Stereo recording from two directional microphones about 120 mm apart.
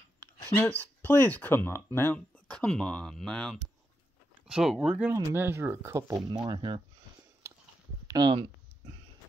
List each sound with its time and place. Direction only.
0.5 s speech: 15° left (ahead or behind)
2.5 s speech: 5° left (ahead or behind)
5.1 s speech: 20° right (ahead or behind)
6.4 s speech: 40° right (ahead or behind)
8.1 s speech: 40° right (ahead or behind)